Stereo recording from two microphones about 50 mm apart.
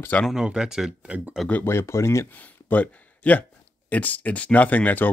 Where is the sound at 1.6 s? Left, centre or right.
Left.